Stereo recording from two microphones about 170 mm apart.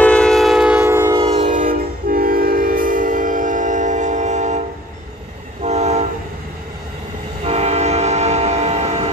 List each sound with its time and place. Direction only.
0.0 s train: 5° left (ahead or behind); by 1.1 s 15° right (ahead or behind)
1.1 s train: 30° right (ahead or behind)
1.4 s train: 50° right (ahead or behind)
7.4 s train: 40° right (ahead or behind)